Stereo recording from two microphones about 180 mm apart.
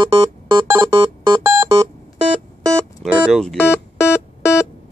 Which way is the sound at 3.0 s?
Centre (ahead or behind).